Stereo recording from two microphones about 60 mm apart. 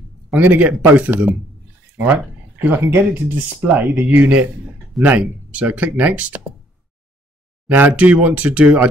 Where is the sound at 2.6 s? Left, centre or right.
Right.